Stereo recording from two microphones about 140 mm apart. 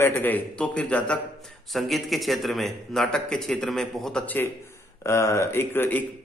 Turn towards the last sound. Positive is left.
turn(degrees=15)  # may be behind; listen again after turning